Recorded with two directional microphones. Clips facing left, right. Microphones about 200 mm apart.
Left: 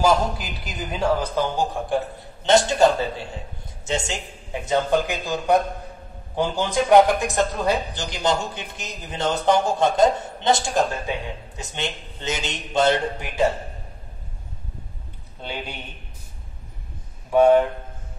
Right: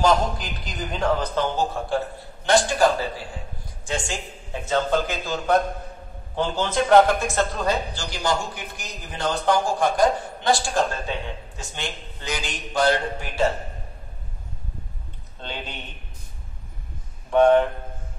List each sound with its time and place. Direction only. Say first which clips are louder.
0.0 s a man's voice: left 1 dB; 5° left (ahead or behind)
15.4 s a man's voice: left 2 dB; 10° left (ahead or behind)
17.3 s a man's voice: left 1 dB; 10° left (ahead or behind)